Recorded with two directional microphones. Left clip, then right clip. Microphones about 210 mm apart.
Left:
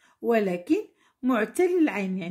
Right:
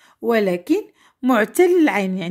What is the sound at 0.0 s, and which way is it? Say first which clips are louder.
Speech: right 6 dB; 35° right (ahead or behind).